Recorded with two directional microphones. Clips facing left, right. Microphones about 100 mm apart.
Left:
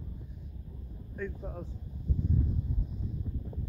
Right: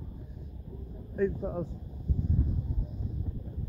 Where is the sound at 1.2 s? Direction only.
30° right (ahead or behind).